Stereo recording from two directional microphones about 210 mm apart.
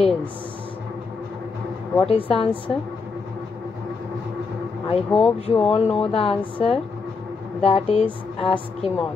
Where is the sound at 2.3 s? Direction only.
25° left (ahead or behind).